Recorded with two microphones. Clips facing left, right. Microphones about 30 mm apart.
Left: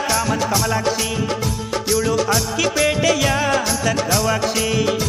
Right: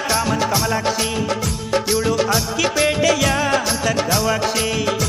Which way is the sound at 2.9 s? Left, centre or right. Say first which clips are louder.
Even; centre.